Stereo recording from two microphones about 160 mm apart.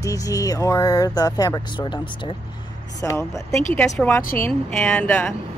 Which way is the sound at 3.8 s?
5° left (ahead or behind).